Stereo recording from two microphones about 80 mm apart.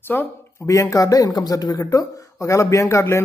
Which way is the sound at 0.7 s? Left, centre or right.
Left.